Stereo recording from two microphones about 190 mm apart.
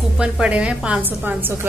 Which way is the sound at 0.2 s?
5° right (ahead or behind).